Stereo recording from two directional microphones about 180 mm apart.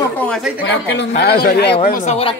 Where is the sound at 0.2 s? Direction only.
Centre (ahead or behind).